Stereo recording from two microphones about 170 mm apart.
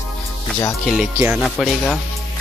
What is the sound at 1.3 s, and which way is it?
Music, centre (ahead or behind).